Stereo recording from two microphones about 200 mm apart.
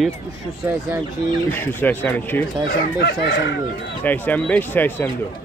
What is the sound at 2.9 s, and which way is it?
Speech, 55° left (ahead or behind).